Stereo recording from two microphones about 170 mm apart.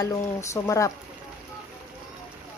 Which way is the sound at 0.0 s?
15° left (ahead or behind).